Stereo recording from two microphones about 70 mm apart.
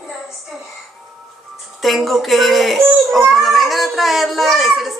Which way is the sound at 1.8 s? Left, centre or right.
Centre.